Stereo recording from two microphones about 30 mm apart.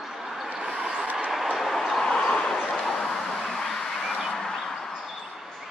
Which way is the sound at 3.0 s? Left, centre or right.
Centre.